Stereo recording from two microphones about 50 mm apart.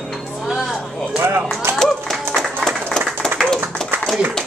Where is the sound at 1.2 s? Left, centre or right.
Right.